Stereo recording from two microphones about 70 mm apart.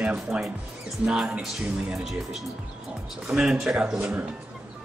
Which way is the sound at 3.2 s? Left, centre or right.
Centre.